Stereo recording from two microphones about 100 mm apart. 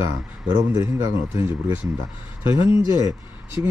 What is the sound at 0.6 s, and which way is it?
Speech, 30° right (ahead or behind).